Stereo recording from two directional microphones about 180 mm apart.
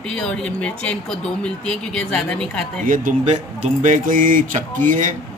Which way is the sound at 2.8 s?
45° right (ahead or behind).